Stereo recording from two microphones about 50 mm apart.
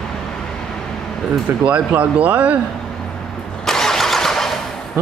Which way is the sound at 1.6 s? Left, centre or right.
Right.